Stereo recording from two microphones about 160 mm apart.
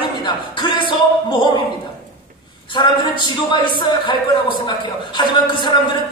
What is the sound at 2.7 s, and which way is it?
A man's voice, 30° left (ahead or behind).